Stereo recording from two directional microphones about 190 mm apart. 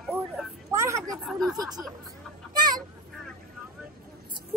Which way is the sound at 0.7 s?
15° right (ahead or behind).